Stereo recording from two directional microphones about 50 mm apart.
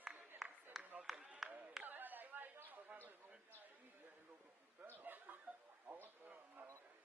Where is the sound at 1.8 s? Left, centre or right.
Right.